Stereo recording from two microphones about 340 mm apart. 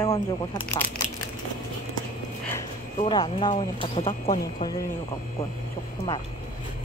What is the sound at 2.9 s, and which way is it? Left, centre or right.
Speech, centre.